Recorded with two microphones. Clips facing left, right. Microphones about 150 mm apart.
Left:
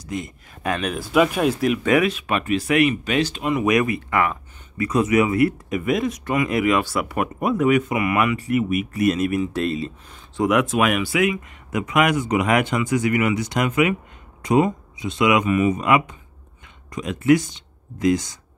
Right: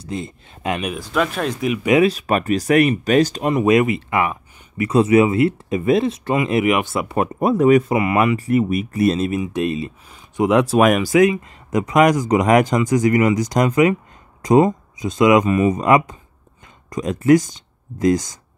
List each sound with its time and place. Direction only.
0.0 s speech: 30° right (ahead or behind)
0.9 s speech: 5° left (ahead or behind)
2.0 s speech: 35° right (ahead or behind)
9.4 s speech: 20° right (ahead or behind)
10.0 s speech: 10° right (ahead or behind)
10.4 s speech: 30° right (ahead or behind)